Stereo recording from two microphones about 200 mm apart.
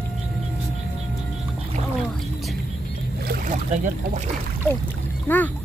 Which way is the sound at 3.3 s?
40° right (ahead or behind).